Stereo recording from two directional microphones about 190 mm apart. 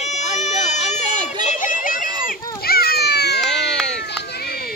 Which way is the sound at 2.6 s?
55° left (ahead or behind).